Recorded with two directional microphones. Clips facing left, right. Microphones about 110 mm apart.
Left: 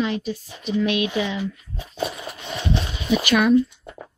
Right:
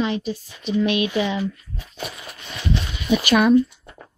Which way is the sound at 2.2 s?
35° left (ahead or behind).